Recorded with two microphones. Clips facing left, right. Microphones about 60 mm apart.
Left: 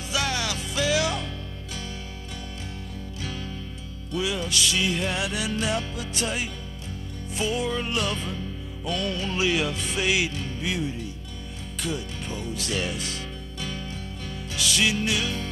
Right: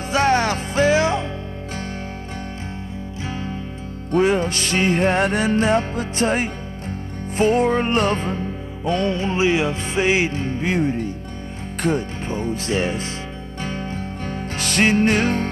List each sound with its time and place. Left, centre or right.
0.1 s music: right
3.3 s music: right
4.1 s music: right